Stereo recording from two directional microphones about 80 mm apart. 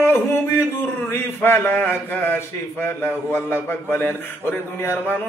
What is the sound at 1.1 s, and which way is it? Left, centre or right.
A man's voice, left.